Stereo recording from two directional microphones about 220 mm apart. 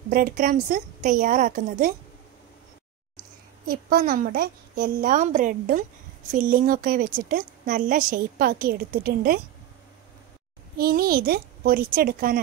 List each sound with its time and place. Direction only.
0.1 s a woman's voice: 40° right (ahead or behind)
3.6 s a woman's voice: 40° right (ahead or behind)
10.8 s speech: 45° right (ahead or behind)